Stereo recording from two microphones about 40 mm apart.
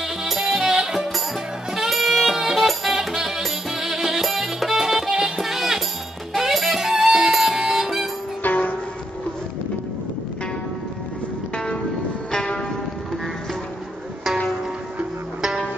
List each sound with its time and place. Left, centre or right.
0.0 s music: centre
8.4 s music: left
11.5 s music: left